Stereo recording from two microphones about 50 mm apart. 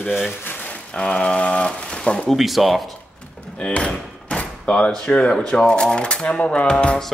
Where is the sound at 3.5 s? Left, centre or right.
Left.